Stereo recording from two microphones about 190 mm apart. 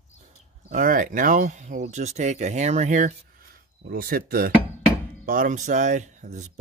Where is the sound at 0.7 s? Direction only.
45° right (ahead or behind).